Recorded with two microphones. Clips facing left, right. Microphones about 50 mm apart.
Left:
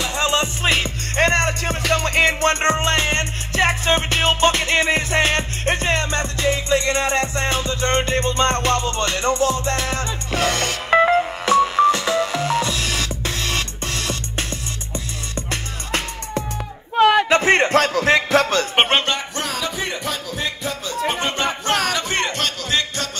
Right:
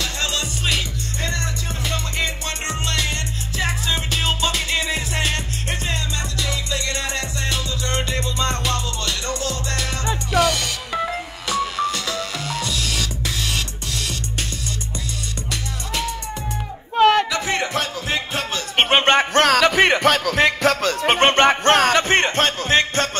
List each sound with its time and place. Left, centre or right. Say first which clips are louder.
0.0 s music: left 5 dB; left
1.1 s music: left 11 dB; left
11.5 s music: left 8 dB; left
15.5 s music: left 2 dB; left
16.9 s a sound: even; centre
17.3 s a sound: left 7 dB; left
19.0 s music: right 9 dB; right